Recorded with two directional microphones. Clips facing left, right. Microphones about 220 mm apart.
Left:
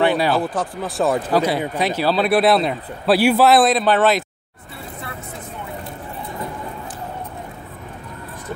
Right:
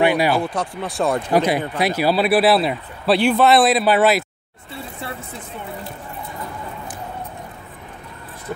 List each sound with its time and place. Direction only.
0.0 s a sound: 15° right (ahead or behind)
0.4 s speech: centre (ahead or behind)
1.3 s speech: 15° right (ahead or behind)